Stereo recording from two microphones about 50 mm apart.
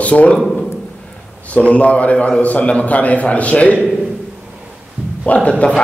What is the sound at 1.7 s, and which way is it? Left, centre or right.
Speech, left.